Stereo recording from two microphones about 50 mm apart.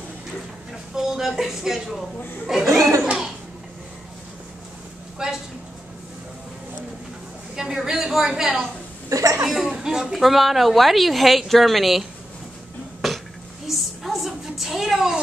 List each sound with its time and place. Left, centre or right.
0.9 s a woman's voice: centre
5.2 s a woman's voice: centre
7.5 s a woman's voice: centre
9.1 s speech: right
9.5 s speech: centre
10.1 s a woman's voice: centre
13.0 s a sound: centre